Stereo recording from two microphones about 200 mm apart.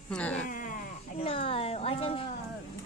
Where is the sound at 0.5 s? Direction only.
40° left (ahead or behind).